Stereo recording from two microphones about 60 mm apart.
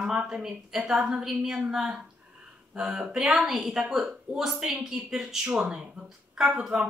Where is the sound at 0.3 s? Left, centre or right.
Centre.